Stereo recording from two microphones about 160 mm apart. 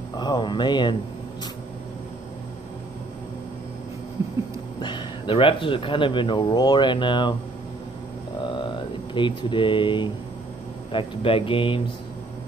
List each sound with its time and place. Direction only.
0.2 s speech: 30° left (ahead or behind)
4.7 s speech: 30° left (ahead or behind)
8.5 s a sound: 30° left (ahead or behind)
10.9 s speech: 35° left (ahead or behind)